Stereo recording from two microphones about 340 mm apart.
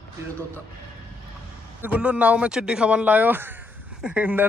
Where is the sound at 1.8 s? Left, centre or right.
Centre.